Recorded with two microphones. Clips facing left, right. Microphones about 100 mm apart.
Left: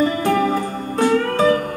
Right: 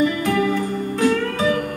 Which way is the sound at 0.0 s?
35° left (ahead or behind).